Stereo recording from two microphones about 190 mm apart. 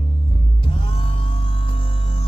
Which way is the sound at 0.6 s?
30° left (ahead or behind).